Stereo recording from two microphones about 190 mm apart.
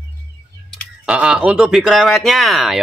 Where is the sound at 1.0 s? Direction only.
5° right (ahead or behind).